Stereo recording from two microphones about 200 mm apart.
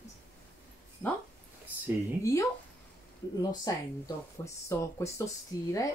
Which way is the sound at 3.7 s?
15° left (ahead or behind).